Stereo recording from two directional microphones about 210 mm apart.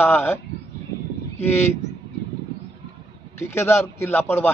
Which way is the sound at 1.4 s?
10° left (ahead or behind).